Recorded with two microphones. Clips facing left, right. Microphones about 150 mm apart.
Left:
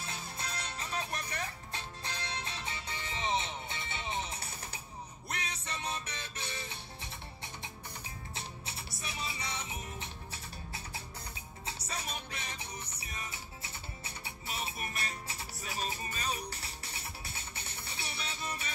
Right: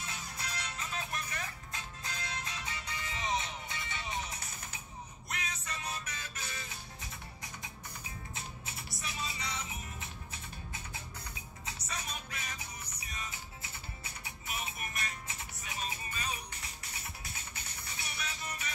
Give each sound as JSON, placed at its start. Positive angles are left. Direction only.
{"t": 0.0, "sound": "music", "side_deg": 30}